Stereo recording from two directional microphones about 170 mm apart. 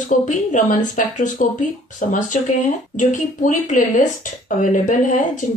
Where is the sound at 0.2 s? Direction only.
45° left (ahead or behind).